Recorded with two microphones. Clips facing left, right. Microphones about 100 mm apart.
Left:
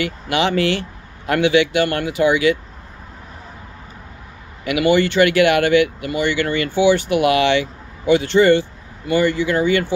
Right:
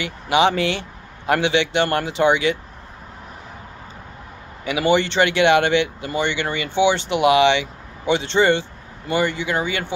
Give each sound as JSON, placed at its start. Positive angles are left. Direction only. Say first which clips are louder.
{"t": 0.0, "sound": "speech", "louder": "right 2 dB", "side_deg": -20}
{"t": 4.6, "sound": "speech", "louder": "left 3 dB", "side_deg": -25}